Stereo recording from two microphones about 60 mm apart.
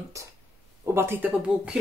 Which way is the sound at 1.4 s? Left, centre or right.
Centre.